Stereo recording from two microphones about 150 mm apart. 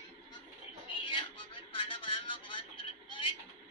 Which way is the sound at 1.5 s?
35° left (ahead or behind).